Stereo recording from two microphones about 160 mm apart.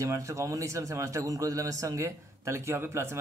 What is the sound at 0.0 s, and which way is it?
A man's voice, 20° right (ahead or behind).